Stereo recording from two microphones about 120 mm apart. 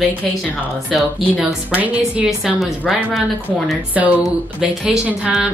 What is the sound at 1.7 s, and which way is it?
A woman's voice, 10° right (ahead or behind).